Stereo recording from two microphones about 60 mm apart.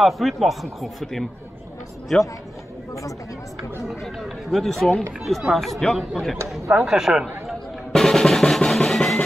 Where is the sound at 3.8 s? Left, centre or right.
Centre.